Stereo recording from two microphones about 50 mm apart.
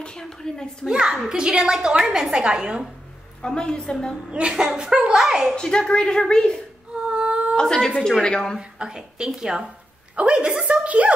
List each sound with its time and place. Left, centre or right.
0.0 s a woman's voice: centre
0.8 s a child's voice: centre
3.4 s a woman's voice: centre
4.3 s a child's voice: right
5.6 s a woman's voice: centre
7.0 s a sound: right
7.6 s a woman's voice: centre
8.5 s a child's voice: centre
10.7 s a sound: right